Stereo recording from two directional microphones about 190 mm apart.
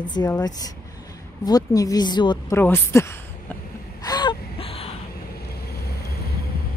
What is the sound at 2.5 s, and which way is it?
Speech, 10° left (ahead or behind).